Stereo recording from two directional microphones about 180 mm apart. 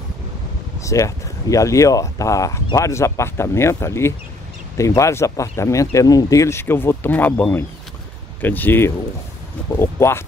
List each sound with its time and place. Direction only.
0.8 s speech: 20° left (ahead or behind)